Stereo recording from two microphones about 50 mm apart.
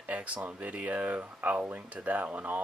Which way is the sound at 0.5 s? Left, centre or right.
Right.